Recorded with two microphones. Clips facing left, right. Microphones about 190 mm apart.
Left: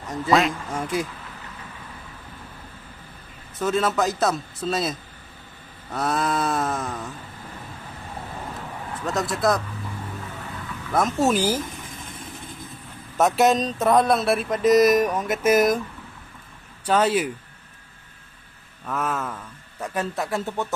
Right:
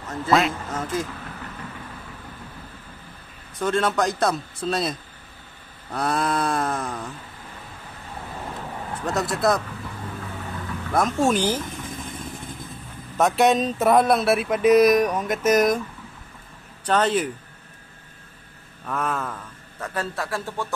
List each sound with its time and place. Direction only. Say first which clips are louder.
0.0 s a sound: left 1 dB; 15° left (ahead or behind)
0.3 s speech: even; centre (ahead or behind)
0.7 s speech: left 1 dB; 10° left (ahead or behind)
3.5 s speech: even; 5° left (ahead or behind)
9.0 s speech: even; centre (ahead or behind)
10.9 s speech: even; 5° left (ahead or behind)
13.2 s speech: even; centre (ahead or behind)
16.8 s speech: left 1 dB; 10° left (ahead or behind)
18.9 s speech: even; 5° left (ahead or behind)
19.8 s speech: left 2 dB; 15° left (ahead or behind)